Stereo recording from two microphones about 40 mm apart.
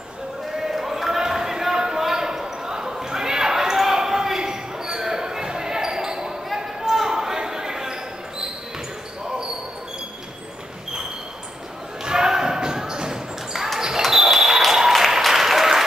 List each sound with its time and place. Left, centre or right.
0.6 s basketball bounce: centre
12.0 s basketball bounce: centre
15.2 s applause: centre